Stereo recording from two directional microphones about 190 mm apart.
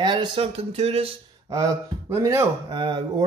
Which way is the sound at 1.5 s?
15° right (ahead or behind).